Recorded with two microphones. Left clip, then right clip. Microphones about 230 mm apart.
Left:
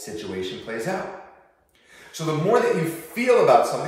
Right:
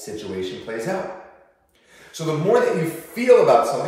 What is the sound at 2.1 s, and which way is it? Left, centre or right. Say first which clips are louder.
Speech: right 2 dB; centre.